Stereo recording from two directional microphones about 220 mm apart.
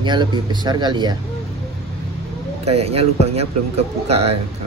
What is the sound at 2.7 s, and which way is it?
Speech, 30° right (ahead or behind).